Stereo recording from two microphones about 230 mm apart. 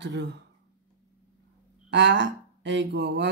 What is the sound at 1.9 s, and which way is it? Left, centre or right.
Speech, right.